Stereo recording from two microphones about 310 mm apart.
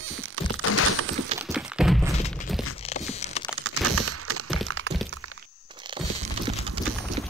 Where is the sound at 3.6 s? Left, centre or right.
Right.